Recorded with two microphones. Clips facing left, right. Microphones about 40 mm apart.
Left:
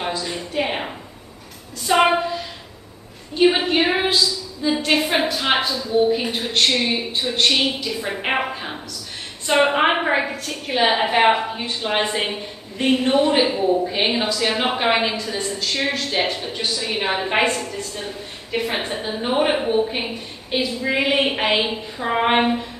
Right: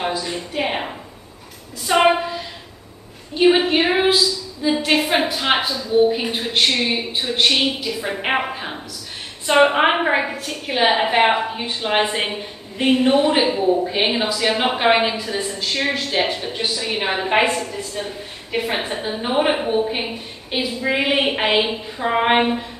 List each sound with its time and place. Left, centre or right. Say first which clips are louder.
0.0 s a woman's voice: right 2 dB; centre